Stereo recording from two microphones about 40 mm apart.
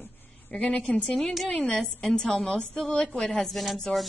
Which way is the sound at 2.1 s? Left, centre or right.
Centre.